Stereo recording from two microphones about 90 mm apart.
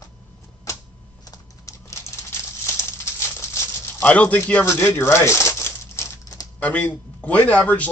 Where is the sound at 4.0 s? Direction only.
15° left (ahead or behind).